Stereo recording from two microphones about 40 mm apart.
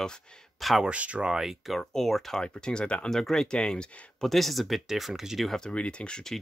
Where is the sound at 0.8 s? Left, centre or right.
Right.